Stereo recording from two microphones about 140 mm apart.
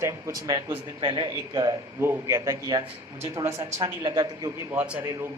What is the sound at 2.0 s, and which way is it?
A man's voice, 20° right (ahead or behind).